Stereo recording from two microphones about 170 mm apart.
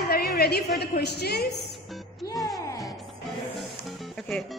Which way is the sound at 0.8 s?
75° left (ahead or behind).